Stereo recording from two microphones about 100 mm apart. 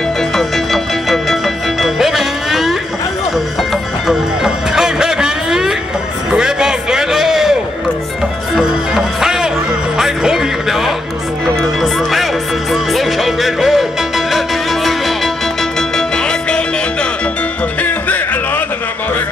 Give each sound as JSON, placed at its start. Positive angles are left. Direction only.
{"t": 0.4, "sound": "music", "side_deg": 0}
{"t": 4.1, "sound": "music", "side_deg": -5}
{"t": 8.5, "sound": "music", "side_deg": -5}
{"t": 17.8, "sound": "music", "side_deg": 15}